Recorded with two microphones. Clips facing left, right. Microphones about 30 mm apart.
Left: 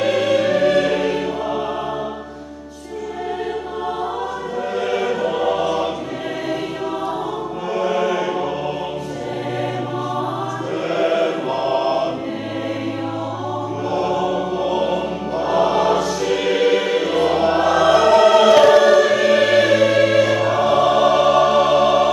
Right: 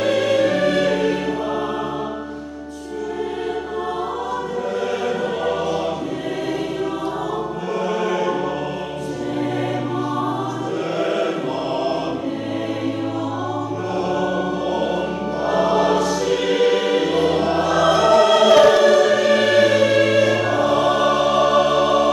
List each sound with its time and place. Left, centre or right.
0.0 s music: centre
4.9 s choir: centre
7.8 s choir: centre
11.0 s chant: centre
13.9 s music: centre